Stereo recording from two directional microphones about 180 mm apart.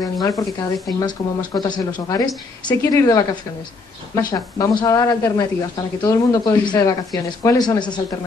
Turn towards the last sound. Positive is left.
turn(degrees=20)  # may be behind; listen again after turning